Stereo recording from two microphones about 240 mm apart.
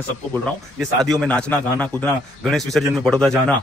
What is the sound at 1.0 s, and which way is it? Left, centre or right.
Speech, centre.